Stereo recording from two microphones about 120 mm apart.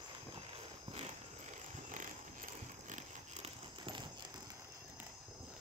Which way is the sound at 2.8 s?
80° right.